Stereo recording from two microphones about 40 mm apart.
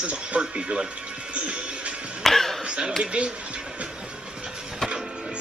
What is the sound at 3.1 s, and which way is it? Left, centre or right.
Speech, right.